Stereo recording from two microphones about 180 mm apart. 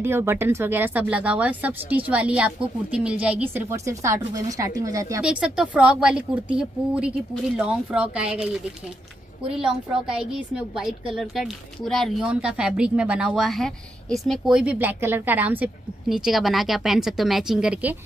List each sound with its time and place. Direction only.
0.0 s speech: 15° right (ahead or behind)
5.2 s a woman's voice: 5° right (ahead or behind)
9.6 s a woman's voice: 5° right (ahead or behind)